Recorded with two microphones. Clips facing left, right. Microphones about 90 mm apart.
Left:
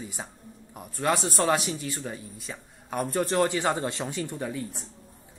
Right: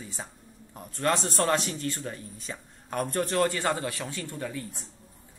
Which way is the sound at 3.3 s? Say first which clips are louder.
Left 2 dB; 20° left (ahead or behind).